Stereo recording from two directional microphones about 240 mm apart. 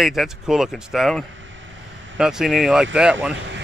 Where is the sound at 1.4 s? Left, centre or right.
Right.